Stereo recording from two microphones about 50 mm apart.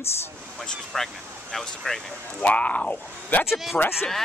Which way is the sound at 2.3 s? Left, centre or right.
Left.